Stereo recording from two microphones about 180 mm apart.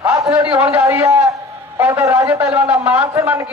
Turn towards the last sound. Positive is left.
turn(degrees=-15)  # may be behind; listen again after turning